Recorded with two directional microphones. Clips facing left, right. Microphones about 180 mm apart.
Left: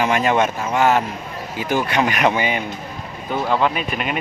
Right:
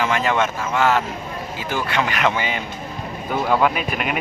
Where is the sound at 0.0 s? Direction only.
15° left (ahead or behind).